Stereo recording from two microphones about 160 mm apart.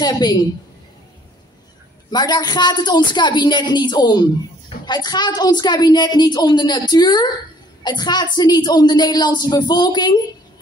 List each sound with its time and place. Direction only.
0.0 s a woman's voice: 25° left (ahead or behind)
2.0 s a woman's voice: 25° left (ahead or behind)